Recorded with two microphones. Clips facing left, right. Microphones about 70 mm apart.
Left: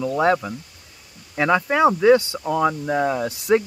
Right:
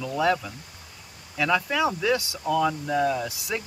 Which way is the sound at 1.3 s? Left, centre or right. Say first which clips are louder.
Left 5 dB; left.